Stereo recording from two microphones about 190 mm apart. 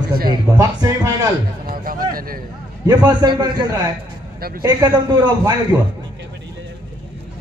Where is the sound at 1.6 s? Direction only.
50° right (ahead or behind).